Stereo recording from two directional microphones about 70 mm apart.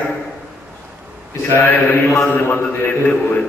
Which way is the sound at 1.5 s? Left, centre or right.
Left.